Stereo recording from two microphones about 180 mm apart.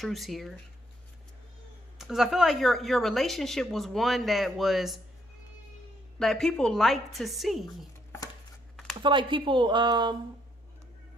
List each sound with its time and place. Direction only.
0.0 s speech: centre (ahead or behind)
2.0 s speech: centre (ahead or behind)
6.1 s speech: centre (ahead or behind)
7.6 s a sound: 20° left (ahead or behind)
9.0 s speech: 25° right (ahead or behind)